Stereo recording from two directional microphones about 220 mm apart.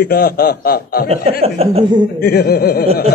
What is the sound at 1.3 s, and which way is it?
Speech, 25° right (ahead or behind).